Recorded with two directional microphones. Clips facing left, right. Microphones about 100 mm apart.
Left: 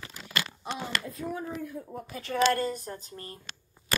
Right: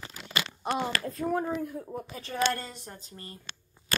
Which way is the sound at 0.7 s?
60° right (ahead or behind).